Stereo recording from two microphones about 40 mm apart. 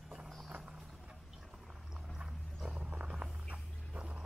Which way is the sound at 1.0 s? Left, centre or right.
Centre.